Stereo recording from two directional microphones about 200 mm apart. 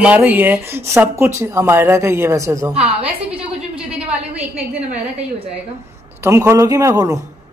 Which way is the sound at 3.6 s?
5° right (ahead or behind).